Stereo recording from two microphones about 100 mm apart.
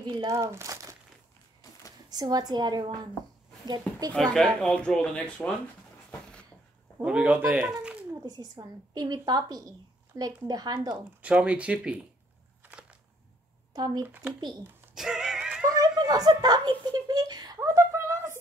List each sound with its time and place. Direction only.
0.0 s speech: 50° right (ahead or behind)
0.3 s speech: 30° right (ahead or behind)
2.0 s a woman's voice: 40° right (ahead or behind)
4.1 s speech: 5° left (ahead or behind)
7.0 s speech: 10° right (ahead or behind)
8.1 s speech: 40° right (ahead or behind)
11.1 s speech: 15° right (ahead or behind)
13.7 s speech: 40° right (ahead or behind)
14.0 s speech: 15° right (ahead or behind)
15.0 s a sound: 5° right (ahead or behind)
15.6 s a sound: 35° right (ahead or behind)